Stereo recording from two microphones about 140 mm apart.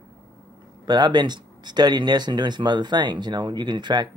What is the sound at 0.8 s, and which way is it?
Speech, 30° right (ahead or behind).